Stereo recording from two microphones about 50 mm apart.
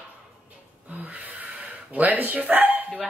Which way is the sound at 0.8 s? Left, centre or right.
Right.